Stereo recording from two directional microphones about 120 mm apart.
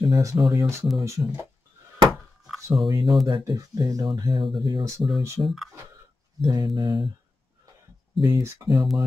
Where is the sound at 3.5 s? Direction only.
30° right (ahead or behind).